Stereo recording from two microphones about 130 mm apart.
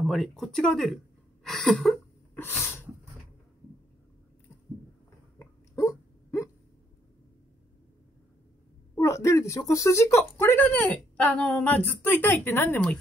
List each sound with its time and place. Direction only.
0.0 s speech: centre (ahead or behind)
2.3 s sneeze: 15° left (ahead or behind)
5.4 s dog: 25° left (ahead or behind)
8.9 s speech: 20° left (ahead or behind)